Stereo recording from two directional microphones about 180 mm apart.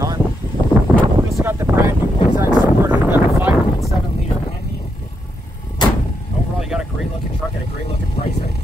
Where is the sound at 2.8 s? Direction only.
10° right (ahead or behind).